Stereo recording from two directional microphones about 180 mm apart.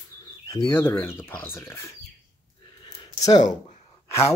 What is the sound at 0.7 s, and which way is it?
Speech, 15° left (ahead or behind).